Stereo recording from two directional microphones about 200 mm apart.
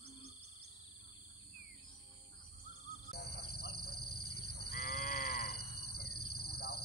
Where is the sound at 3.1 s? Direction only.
50° left (ahead or behind).